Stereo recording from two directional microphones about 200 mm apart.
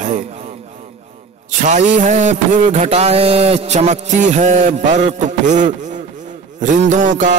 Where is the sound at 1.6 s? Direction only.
40° right (ahead or behind).